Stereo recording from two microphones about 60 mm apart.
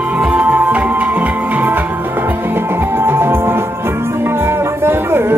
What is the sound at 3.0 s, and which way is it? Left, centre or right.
Music, right.